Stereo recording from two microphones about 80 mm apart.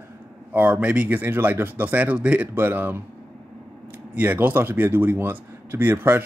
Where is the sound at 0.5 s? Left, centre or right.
Right.